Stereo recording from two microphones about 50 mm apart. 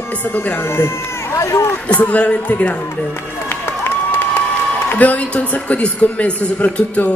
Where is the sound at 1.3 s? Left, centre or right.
Left.